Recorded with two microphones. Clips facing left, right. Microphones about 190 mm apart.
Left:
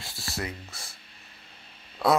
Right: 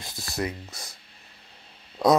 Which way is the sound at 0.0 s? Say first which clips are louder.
Right 5 dB; 20° right (ahead or behind).